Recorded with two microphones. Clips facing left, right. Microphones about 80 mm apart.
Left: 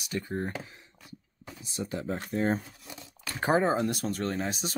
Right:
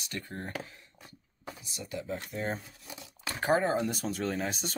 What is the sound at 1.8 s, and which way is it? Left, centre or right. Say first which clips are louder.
Speech: left 4 dB; left.